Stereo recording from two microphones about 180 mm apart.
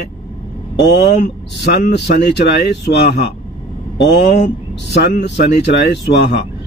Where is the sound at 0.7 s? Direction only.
65° left (ahead or behind).